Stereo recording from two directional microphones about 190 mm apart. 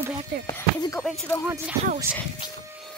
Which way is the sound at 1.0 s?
Centre (ahead or behind).